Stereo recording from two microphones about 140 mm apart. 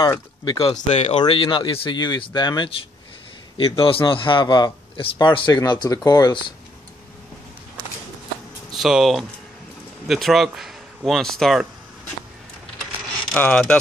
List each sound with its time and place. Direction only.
0.5 s speech: 40° left (ahead or behind)
1.1 s a man's voice: 35° left (ahead or behind)
8.7 s speech: centre (ahead or behind)
13.3 s speech: 10° left (ahead or behind)